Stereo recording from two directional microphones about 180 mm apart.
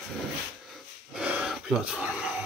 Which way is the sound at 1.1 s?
5° right (ahead or behind).